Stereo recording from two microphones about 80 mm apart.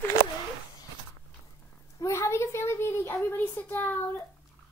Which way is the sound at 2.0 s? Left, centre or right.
Left.